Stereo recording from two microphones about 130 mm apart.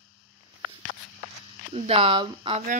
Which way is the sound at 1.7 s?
50° right (ahead or behind).